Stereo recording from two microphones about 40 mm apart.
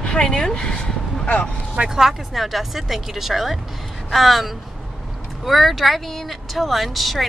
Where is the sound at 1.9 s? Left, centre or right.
Centre.